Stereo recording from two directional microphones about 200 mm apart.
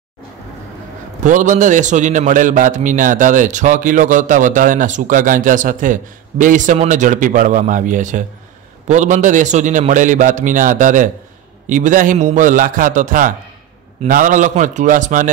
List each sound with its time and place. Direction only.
1.2 s a man's voice: 40° right (ahead or behind)